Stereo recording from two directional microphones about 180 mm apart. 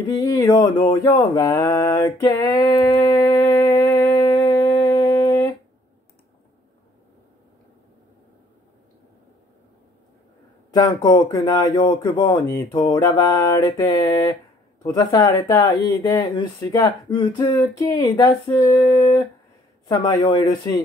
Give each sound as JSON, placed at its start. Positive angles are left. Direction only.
{"t": 0.0, "sound": "mantra", "side_deg": 20}
{"t": 10.7, "sound": "speech", "side_deg": 20}